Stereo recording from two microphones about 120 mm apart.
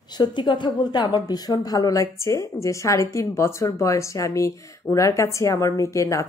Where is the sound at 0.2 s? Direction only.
40° left (ahead or behind).